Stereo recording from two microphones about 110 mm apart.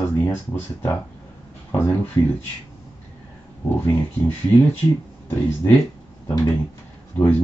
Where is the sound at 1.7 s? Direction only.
20° left (ahead or behind).